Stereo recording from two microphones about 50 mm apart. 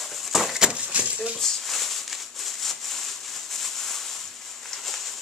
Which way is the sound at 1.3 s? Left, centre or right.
Centre.